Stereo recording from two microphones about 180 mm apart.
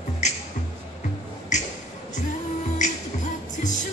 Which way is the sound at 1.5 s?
40° left (ahead or behind).